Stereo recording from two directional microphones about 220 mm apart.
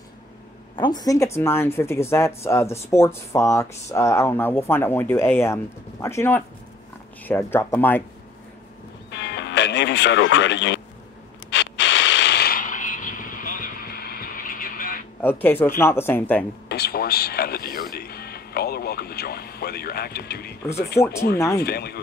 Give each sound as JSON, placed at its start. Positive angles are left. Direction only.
{"t": 0.7, "sound": "speech", "side_deg": 20}
{"t": 9.1, "sound": "music", "side_deg": 50}
{"t": 11.5, "sound": "a sound", "side_deg": 55}
{"t": 15.2, "sound": "speech", "side_deg": 10}
{"t": 16.6, "sound": "speech", "side_deg": 45}
{"t": 21.0, "sound": "speech", "side_deg": 10}
{"t": 21.6, "sound": "speech", "side_deg": 45}